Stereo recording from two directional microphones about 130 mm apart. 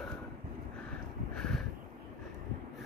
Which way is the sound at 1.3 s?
5° left (ahead or behind).